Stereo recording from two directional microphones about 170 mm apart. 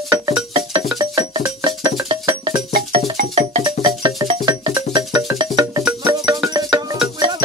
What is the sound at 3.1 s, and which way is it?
Music, 40° right (ahead or behind).